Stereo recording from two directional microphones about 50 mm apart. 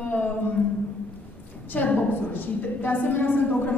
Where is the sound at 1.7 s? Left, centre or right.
Left.